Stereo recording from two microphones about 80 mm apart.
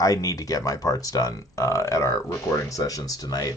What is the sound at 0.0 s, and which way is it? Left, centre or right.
Speech, left.